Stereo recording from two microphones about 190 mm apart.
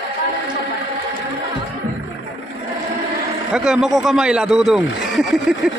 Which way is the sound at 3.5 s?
5° right (ahead or behind).